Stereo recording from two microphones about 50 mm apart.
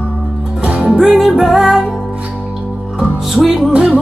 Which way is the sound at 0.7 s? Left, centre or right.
Centre.